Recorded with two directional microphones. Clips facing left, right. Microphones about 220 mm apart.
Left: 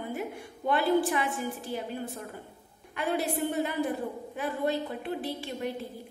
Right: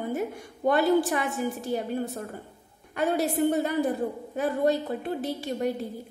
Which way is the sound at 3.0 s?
40° right (ahead or behind).